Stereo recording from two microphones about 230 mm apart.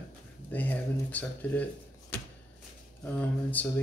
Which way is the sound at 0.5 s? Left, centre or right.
Centre.